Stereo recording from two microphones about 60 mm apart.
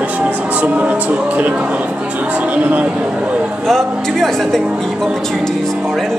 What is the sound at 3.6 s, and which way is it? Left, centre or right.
Speech, centre.